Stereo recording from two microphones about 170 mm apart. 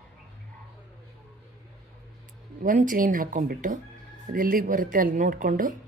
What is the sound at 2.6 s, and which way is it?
Speech, 50° right (ahead or behind).